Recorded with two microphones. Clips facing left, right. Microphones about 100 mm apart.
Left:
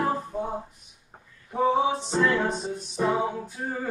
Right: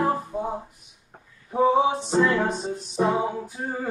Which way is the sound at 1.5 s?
15° right (ahead or behind).